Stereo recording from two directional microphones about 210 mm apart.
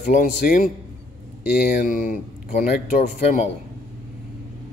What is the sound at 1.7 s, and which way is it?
Speech, 40° left (ahead or behind).